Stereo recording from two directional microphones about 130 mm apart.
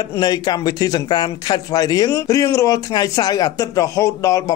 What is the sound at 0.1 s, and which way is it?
Speech, 30° left (ahead or behind).